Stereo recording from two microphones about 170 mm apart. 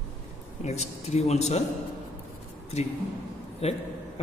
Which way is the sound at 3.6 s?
35° left (ahead or behind).